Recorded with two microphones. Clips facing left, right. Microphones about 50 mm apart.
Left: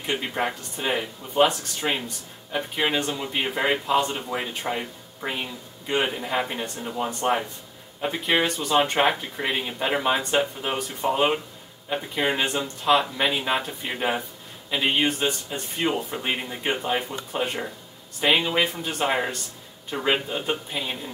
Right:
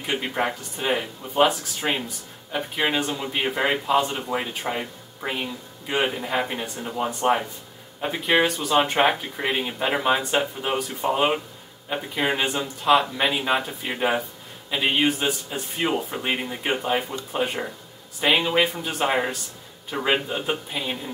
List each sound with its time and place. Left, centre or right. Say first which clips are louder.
0.0 s speech: right 1 dB; centre